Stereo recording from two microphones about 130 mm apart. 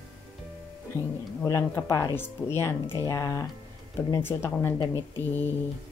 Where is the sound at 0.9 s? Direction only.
25° right (ahead or behind).